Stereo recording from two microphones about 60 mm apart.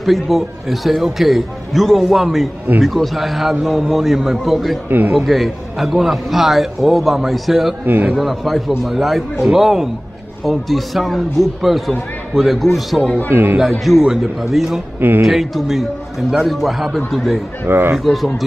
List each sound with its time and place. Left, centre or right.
0.0 s a man's voice: centre
4.8 s a man's voice: right
5.1 s a man's voice: centre
13.3 s a man's voice: right
13.7 s a man's voice: centre
15.0 s speech: right
15.2 s a man's voice: centre
17.6 s a man's voice: right
17.9 s a man's voice: centre